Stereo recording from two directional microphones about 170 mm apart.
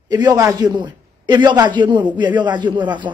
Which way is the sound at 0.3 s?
20° right (ahead or behind).